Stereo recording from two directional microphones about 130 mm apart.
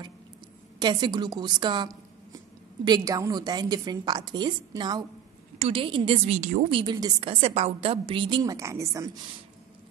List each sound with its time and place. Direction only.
0.7 s a woman's voice: 35° right (ahead or behind)
5.6 s a woman's voice: 45° right (ahead or behind)
6.3 s speech: 70° right (ahead or behind)
6.7 s a woman's voice: 35° right (ahead or behind); by 9.1 s 20° right (ahead or behind)